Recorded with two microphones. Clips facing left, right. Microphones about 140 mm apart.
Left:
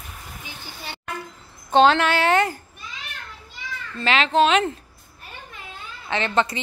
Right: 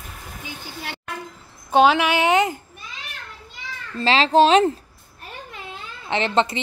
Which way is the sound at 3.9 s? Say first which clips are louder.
Right 3 dB; 30° right (ahead or behind).